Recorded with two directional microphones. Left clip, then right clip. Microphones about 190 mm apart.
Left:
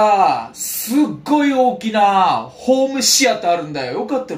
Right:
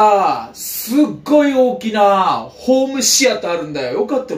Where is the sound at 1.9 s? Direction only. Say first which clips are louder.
Right 1 dB; 10° left (ahead or behind).